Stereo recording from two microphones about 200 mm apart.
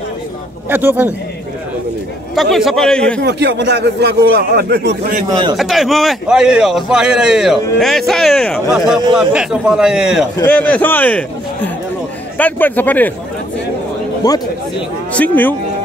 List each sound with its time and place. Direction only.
0.7 s a man's voice: 10° right (ahead or behind)
2.3 s a man's voice: centre (ahead or behind)
3.2 s a man's voice: 60° right (ahead or behind)
5.6 s a man's voice: centre (ahead or behind)
10.5 s a man's voice: 10° left (ahead or behind)
14.2 s speech: 20° left (ahead or behind)
15.1 s a man's voice: 10° left (ahead or behind)